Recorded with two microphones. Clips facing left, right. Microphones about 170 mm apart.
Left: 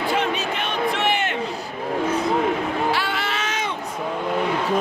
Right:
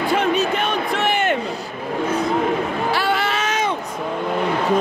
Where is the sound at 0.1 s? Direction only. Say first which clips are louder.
Right 6 dB; 45° right (ahead or behind).